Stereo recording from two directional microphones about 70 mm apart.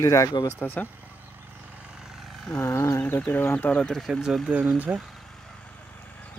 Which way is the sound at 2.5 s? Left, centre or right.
Left.